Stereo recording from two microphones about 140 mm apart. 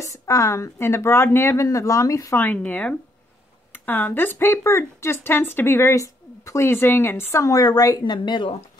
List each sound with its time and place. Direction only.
0.0 s a woman's voice: 20° left (ahead or behind)